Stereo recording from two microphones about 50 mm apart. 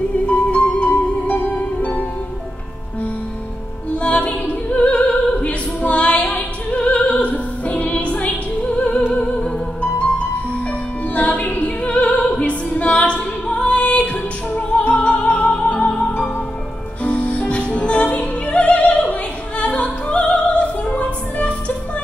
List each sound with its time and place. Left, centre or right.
0.3 s music: left
1.2 s music: left
3.9 s opera: left
9.1 s music: left
11.1 s opera: left
17.0 s music: left
19.6 s opera: left